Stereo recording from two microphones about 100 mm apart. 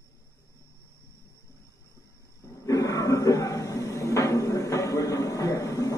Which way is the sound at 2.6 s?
35° left (ahead or behind).